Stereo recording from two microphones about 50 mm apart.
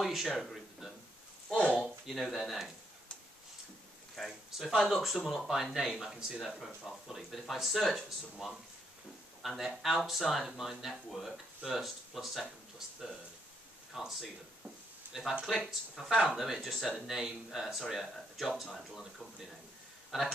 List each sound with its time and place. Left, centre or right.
0.0 s a sound: centre
1.5 s speech: left
1.8 s speech: centre
4.2 s speech: centre
15.0 s a sound: right
15.4 s speech: centre
20.1 s speech: centre